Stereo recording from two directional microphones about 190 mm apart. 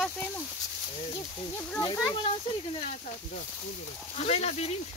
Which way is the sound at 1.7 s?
15° left (ahead or behind).